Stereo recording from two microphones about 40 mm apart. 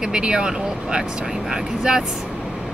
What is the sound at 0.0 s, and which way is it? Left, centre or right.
Speech, centre.